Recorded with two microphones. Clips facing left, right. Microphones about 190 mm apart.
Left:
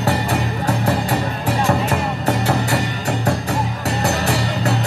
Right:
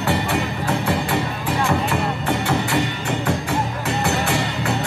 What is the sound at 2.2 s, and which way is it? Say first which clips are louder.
Music: left 2 dB; 40° left (ahead or behind).